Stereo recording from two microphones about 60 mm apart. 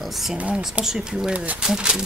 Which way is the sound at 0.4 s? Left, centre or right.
Right.